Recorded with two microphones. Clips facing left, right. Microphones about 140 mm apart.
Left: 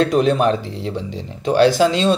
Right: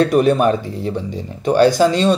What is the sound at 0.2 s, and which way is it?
Speech, 5° right (ahead or behind).